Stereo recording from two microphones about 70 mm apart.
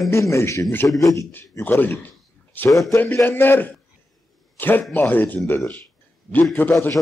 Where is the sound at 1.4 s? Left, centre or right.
Left.